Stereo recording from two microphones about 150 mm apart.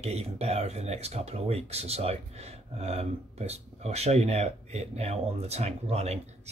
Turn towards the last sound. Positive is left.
turn(degrees=-45)  # may be behind; listen again after turning